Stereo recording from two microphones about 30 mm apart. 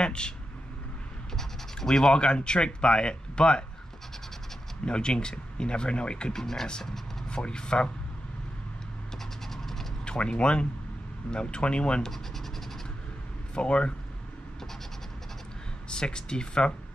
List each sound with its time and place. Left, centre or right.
0.0 s vehicle: left
1.3 s scratch: centre
2.1 s speech: left
4.8 s speech: left
6.3 s speech: centre
7.2 s speech: left
9.5 s a sound: centre
10.0 s speech: left
12.0 s scratch: centre
13.6 s speech: left
15.9 s speech: left